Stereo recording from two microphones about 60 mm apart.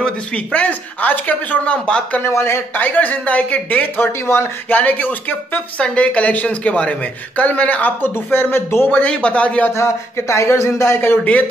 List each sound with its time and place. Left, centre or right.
0.5 s speech: left
1.9 s speech: centre
2.2 s speech: left
2.8 s speech: left
9.0 s speech: left
9.8 s speech: left
11.0 s speech: left